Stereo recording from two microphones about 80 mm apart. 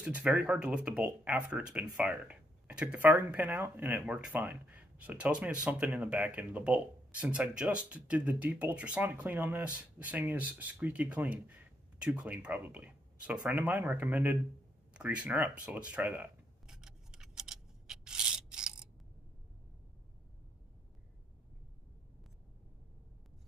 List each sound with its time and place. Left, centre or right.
0.0 s speech: centre
4.1 s speech: centre
16.6 s a sound: centre